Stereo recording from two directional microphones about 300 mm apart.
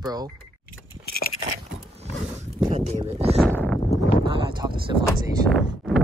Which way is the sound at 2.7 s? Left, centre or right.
Right.